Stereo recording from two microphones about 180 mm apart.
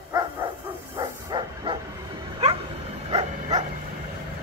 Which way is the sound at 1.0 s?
25° right (ahead or behind).